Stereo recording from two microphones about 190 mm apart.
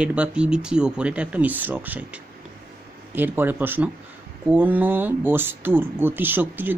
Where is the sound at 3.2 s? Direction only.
10° right (ahead or behind).